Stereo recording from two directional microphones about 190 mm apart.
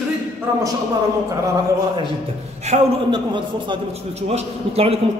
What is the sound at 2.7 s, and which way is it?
Speech, 35° right (ahead or behind).